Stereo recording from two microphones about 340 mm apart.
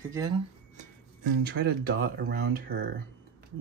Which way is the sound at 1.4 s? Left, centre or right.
Right.